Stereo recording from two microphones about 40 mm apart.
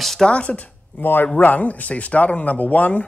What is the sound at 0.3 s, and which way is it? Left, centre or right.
Speech, left.